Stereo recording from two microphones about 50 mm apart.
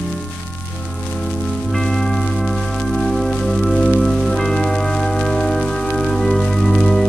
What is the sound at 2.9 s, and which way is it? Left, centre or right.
Music, centre.